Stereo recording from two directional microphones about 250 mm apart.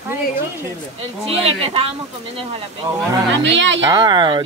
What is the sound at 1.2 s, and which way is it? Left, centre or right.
Speech, right.